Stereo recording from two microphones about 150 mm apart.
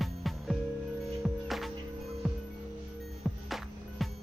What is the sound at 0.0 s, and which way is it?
Music, centre (ahead or behind).